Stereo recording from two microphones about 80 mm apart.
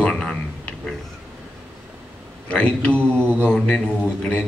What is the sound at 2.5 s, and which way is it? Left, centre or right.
Speech, centre.